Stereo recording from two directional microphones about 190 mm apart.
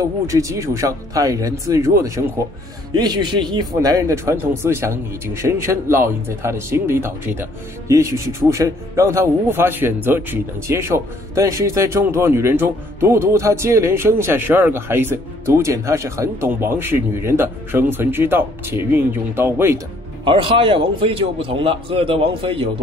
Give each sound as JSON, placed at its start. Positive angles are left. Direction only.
{"t": 0.0, "sound": "speech", "side_deg": -15}
{"t": 20.2, "sound": "speech", "side_deg": -25}